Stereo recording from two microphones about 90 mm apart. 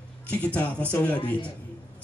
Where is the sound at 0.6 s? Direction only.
15° left (ahead or behind).